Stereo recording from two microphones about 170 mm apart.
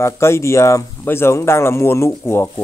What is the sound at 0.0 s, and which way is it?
Speech, 15° left (ahead or behind).